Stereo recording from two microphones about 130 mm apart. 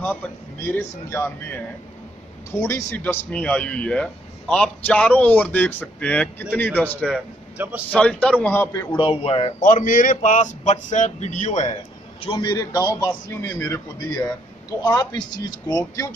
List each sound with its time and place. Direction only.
0.7 s speech: 20° left (ahead or behind)
7.5 s a man's voice: 10° right (ahead or behind)
7.9 s speech: 10° left (ahead or behind)
8.9 s speech: 40° left (ahead or behind)
9.6 s speech: 90° left; by 11.7 s 65° left (ahead or behind)
12.3 s speech: 35° left (ahead or behind)
12.7 s a man's voice: 20° left (ahead or behind)